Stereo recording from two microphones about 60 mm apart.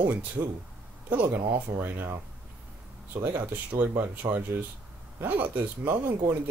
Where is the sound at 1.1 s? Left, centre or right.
Right.